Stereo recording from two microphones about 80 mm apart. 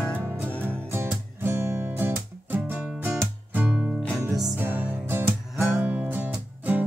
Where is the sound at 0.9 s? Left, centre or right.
Right.